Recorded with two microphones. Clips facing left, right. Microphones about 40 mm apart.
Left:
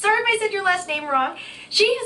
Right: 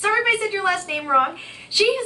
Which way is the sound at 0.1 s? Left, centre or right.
Centre.